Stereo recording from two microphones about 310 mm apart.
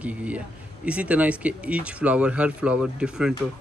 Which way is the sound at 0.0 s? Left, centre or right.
Centre.